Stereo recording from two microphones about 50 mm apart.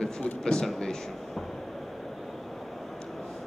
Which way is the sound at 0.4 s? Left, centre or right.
Centre.